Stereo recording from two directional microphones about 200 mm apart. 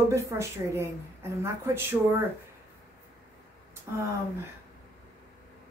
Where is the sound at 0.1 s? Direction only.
15° right (ahead or behind).